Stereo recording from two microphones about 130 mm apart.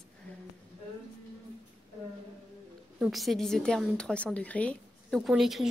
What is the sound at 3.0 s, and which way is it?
A woman's voice, centre (ahead or behind).